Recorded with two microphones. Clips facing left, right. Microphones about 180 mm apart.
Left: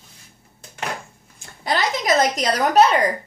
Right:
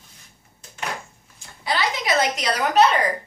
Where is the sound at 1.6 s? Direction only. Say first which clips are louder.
Left 3 dB; 45° left (ahead or behind).